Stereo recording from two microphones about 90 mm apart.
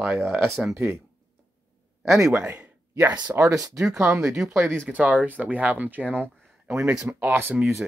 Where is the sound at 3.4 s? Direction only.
40° right (ahead or behind).